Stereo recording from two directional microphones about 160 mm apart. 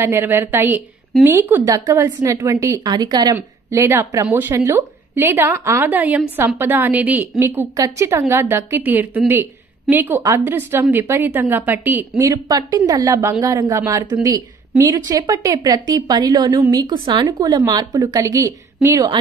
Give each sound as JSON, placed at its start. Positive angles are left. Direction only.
{"t": 0.0, "sound": "a woman's voice", "side_deg": -15}
{"t": 12.2, "sound": "a woman's voice", "side_deg": -20}